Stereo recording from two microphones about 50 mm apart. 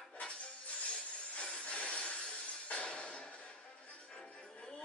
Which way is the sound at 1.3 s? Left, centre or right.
Left.